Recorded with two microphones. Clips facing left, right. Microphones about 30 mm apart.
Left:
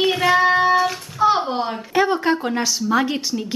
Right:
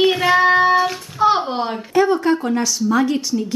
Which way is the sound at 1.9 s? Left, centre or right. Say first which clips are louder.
Right 3 dB; centre.